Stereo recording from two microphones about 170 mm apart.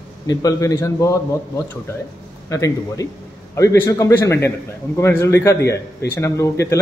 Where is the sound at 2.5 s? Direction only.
20° left (ahead or behind).